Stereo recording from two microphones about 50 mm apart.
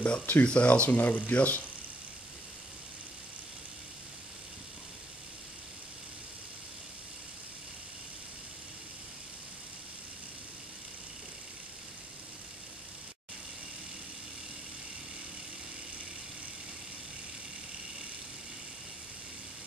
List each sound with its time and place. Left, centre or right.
0.0 s speech: left